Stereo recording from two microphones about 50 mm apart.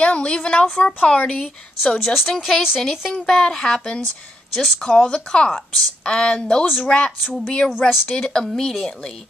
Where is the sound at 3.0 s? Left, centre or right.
Centre.